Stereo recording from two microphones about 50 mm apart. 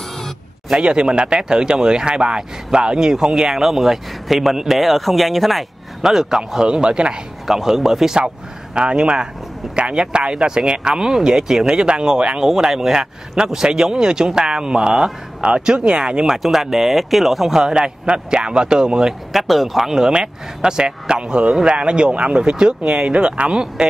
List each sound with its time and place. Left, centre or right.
0.7 s speech: centre
7.4 s speech: centre
8.7 s speech: centre
16.4 s speech: centre
17.6 s speech: centre
19.3 s speech: centre
19.9 s speech: centre